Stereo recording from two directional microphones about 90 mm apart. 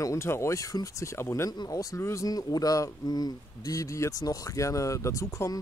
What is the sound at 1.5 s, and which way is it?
Speech, 40° left (ahead or behind).